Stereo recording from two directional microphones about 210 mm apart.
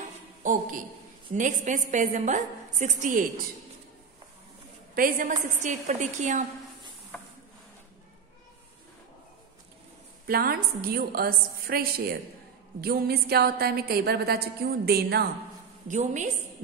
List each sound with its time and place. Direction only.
0.4 s a woman's voice: 40° right (ahead or behind)
4.9 s a woman's voice: 40° right (ahead or behind)
10.2 s a woman's voice: 45° right (ahead or behind)
15.9 s a woman's voice: 35° right (ahead or behind)